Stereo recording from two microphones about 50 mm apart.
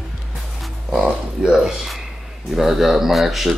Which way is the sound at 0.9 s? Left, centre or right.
Centre.